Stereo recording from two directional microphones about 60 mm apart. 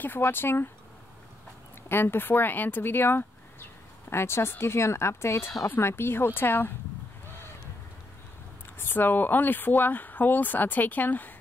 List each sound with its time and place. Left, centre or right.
0.0 s speech: left
1.9 s a woman's voice: left
8.7 s speech: left